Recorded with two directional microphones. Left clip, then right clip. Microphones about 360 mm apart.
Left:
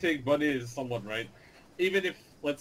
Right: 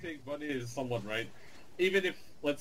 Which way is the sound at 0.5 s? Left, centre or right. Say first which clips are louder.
Left 2 dB; centre.